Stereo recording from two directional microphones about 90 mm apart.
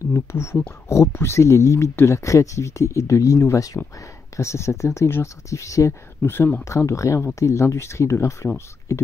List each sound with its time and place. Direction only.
0.1 s speech: 30° left (ahead or behind)